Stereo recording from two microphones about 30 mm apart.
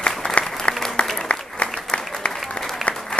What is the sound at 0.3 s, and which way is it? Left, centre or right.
Applause, left.